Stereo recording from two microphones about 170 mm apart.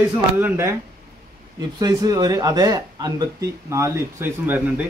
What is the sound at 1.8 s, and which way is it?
Speech, 20° right (ahead or behind).